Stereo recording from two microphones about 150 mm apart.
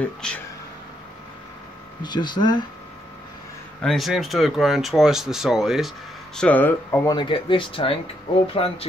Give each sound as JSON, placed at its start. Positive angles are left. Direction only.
{"t": 0.0, "sound": "speech", "side_deg": 5}
{"t": 2.0, "sound": "speech", "side_deg": 30}
{"t": 3.8, "sound": "speech", "side_deg": 0}
{"t": 7.2, "sound": "speech", "side_deg": 30}